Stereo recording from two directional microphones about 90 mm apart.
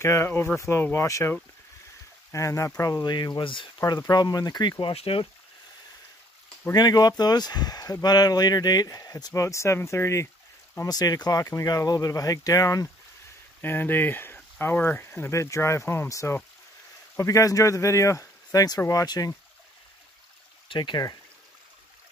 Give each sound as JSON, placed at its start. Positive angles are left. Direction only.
{"t": 0.0, "sound": "speech", "side_deg": 30}
{"t": 2.3, "sound": "speech", "side_deg": 35}
{"t": 2.8, "sound": "speech", "side_deg": 45}
{"t": 4.0, "sound": "speech", "side_deg": 45}
{"t": 6.7, "sound": "speech", "side_deg": 50}
{"t": 10.8, "sound": "speech", "side_deg": 45}
{"t": 13.6, "sound": "speech", "side_deg": 20}
{"t": 20.6, "sound": "speech", "side_deg": 65}